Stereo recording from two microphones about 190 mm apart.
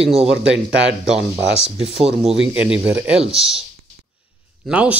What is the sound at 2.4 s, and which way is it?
Speech, 5° right (ahead or behind).